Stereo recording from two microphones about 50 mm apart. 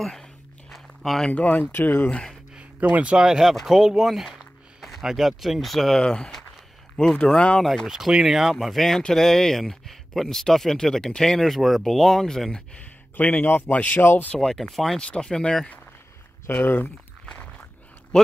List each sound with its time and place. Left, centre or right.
0.0 s a sound: centre
1.3 s speech: left
1.7 s speech: left
2.8 s speech: right
3.1 s speech: centre
7.6 s speech: centre
13.1 s a man's voice: left
13.9 s speech: left
14.3 s speech: centre
15.0 s speech: centre
16.6 s a man's voice: left